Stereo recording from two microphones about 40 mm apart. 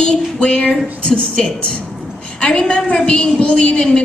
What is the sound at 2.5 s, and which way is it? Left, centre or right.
Speech, centre.